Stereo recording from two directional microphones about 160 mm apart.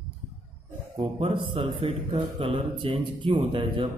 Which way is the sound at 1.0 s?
35° right (ahead or behind).